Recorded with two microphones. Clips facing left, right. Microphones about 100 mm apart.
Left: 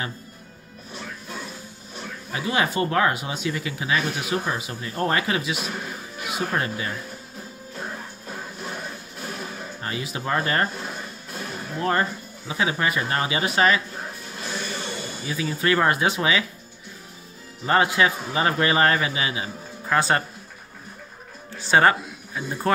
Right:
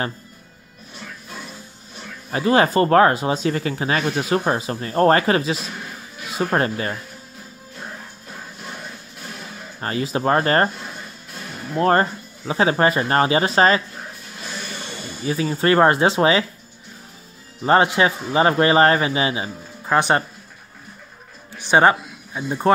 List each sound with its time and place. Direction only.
2.3 s speech: 40° right (ahead or behind)
9.8 s speech: 40° right (ahead or behind)
11.8 s speech: 40° right (ahead or behind)
15.2 s speech: 35° right (ahead or behind)
17.6 s a man's voice: 25° right (ahead or behind)
21.5 s speech: 20° right (ahead or behind)